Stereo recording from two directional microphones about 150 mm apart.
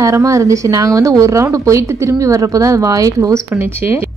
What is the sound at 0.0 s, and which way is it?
A woman's voice, 20° right (ahead or behind).